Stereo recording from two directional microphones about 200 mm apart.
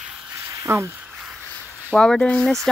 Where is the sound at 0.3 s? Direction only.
15° right (ahead or behind).